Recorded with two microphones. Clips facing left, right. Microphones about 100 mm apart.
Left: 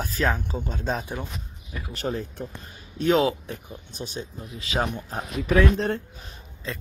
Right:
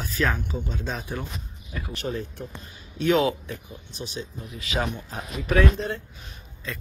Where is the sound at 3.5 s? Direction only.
50° left (ahead or behind).